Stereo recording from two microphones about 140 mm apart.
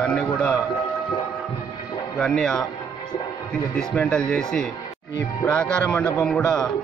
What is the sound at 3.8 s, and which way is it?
Speech, 5° left (ahead or behind).